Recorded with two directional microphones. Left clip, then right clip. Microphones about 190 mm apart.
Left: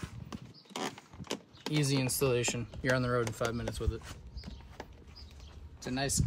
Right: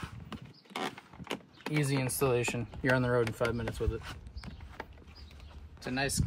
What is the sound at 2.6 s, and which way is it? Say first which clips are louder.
Speech: right 2 dB; 25° right (ahead or behind).